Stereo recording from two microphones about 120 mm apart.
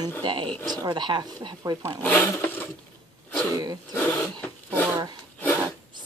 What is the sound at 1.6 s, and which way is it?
Speech, 25° right (ahead or behind).